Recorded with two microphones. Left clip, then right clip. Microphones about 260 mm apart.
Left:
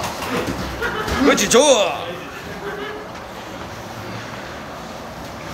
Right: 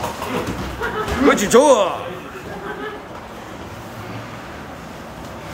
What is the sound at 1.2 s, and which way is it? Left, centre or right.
Speech, centre.